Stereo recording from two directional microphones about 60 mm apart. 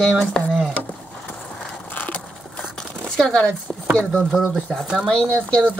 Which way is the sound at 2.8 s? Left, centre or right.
Centre.